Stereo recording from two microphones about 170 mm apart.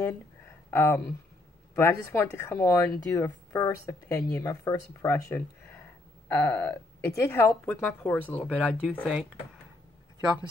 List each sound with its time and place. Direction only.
0.7 s speech: 15° left (ahead or behind)
6.2 s a sound: 10° left (ahead or behind)
7.0 s speech: 15° left (ahead or behind)